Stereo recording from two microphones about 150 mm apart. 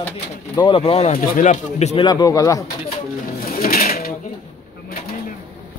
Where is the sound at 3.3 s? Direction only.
80° left.